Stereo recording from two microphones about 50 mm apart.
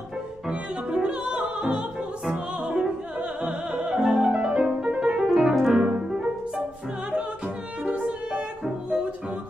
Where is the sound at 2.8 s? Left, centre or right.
Centre.